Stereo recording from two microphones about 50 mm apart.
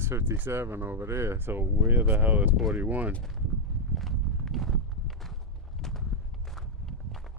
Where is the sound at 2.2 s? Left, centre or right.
Right.